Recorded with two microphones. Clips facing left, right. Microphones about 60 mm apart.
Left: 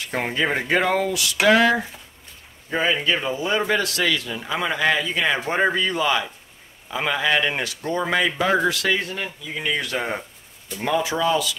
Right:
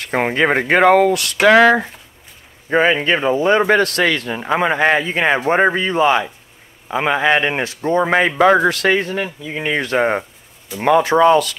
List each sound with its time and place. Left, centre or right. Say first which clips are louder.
0.0 s a man's voice: right 7 dB; right
8.4 s speech: right 8 dB; right